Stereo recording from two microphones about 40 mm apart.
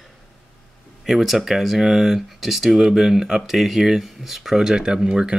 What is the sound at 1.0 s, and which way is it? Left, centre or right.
Speech, centre.